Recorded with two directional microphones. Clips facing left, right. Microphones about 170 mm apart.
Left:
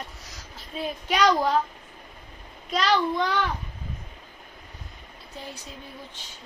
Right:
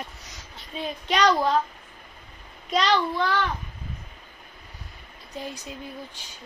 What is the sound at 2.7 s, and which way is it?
Speech, centre (ahead or behind).